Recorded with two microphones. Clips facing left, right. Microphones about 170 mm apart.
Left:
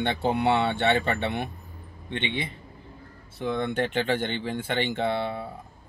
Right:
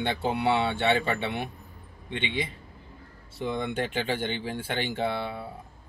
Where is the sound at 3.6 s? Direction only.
10° right (ahead or behind).